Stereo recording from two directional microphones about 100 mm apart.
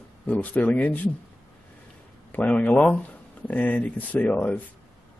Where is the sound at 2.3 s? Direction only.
15° left (ahead or behind).